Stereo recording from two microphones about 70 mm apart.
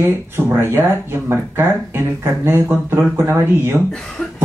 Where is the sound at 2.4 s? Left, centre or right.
Right.